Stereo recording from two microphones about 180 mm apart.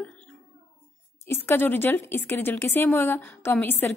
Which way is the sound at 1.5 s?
10° left (ahead or behind).